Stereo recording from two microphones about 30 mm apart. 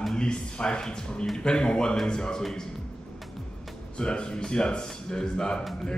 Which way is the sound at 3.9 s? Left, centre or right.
Left.